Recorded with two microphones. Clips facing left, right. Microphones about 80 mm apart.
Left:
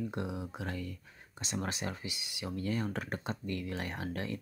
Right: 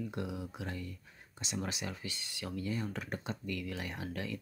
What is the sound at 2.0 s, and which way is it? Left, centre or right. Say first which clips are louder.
Speech: left 1 dB; centre.